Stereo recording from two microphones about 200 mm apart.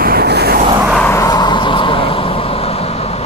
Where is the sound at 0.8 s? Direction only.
5° left (ahead or behind).